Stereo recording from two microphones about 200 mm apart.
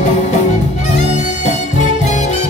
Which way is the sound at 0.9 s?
35° left (ahead or behind).